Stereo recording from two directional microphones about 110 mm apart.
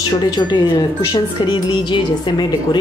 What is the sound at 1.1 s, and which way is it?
A woman's voice, 40° left (ahead or behind).